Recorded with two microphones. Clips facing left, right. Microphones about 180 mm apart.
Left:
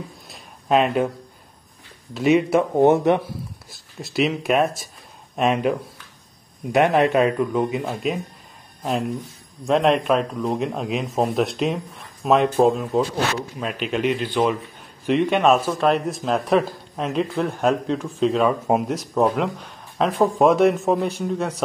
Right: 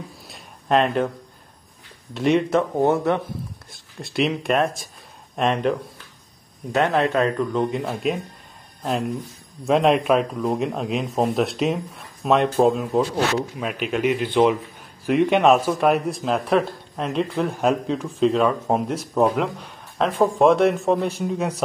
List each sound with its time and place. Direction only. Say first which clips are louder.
0.3 s a sound: left 1 dB; 5° left (ahead or behind)
2.1 s speech: left 2 dB; 5° left (ahead or behind)
2.8 s speech: left 6 dB; 20° left (ahead or behind)
4.0 s speech: left 1 dB; centre (ahead or behind)
14.2 s a man's voice: right 3 dB; 20° right (ahead or behind)
16.1 s speech: left 1 dB; centre (ahead or behind)